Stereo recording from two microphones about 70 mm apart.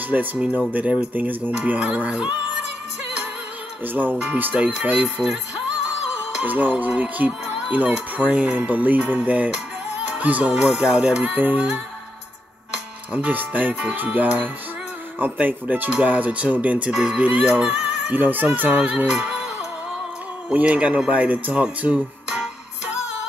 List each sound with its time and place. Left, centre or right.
0.1 s speech: right
3.8 s speech: right
6.4 s speech: right
10.6 s speech: centre
13.1 s speech: right
18.1 s speech: right
19.0 s music: centre
20.5 s speech: right
21.8 s music: centre